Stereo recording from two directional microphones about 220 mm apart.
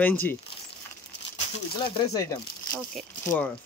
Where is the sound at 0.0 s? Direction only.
10° left (ahead or behind).